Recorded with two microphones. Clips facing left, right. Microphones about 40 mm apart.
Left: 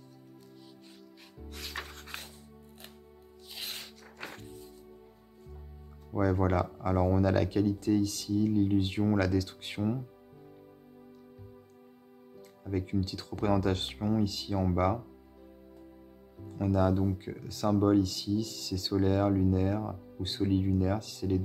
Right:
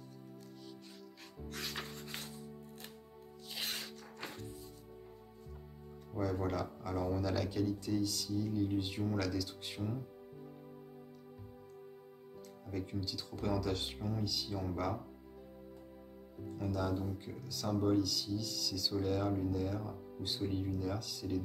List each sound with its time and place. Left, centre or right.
3.4 s music: centre
6.1 s speech: left
12.6 s speech: left
16.7 s speech: left
20.2 s speech: left